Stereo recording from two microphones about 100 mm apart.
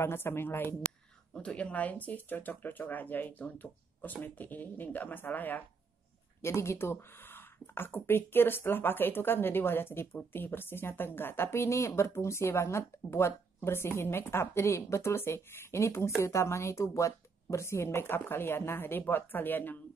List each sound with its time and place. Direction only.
0.0 s speech: 25° left (ahead or behind)
1.3 s speech: 10° left (ahead or behind)